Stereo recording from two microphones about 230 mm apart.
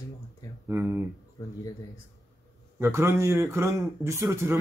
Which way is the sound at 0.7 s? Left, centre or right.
Centre.